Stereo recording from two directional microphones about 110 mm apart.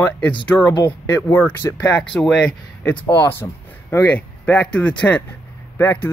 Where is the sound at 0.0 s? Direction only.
15° left (ahead or behind).